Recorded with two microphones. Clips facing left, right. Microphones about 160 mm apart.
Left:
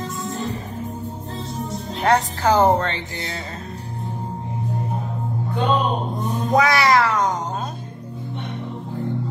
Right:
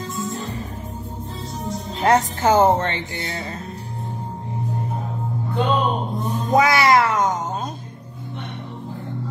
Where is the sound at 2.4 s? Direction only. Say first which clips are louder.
Even; 20° right (ahead or behind).